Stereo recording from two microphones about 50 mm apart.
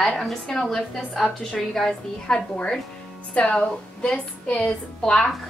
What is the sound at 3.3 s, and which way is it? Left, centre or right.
A woman's voice, left.